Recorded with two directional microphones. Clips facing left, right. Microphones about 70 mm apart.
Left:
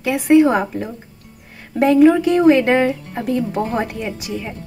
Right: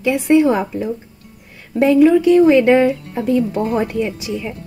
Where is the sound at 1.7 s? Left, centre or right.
Left.